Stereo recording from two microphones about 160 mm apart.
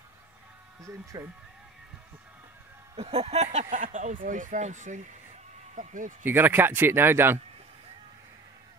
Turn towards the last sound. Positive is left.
turn(degrees=-15)  # may be behind; listen again after turning